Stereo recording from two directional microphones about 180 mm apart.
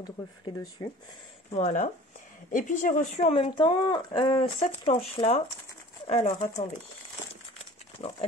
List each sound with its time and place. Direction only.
0.0 s speech: 25° left (ahead or behind)
1.5 s speech: 40° left (ahead or behind)
8.0 s speech: 25° left (ahead or behind)